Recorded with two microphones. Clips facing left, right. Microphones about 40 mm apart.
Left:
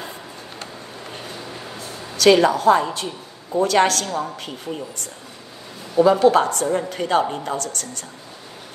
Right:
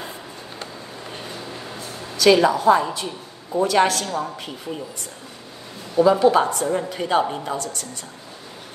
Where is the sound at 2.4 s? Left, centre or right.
Left.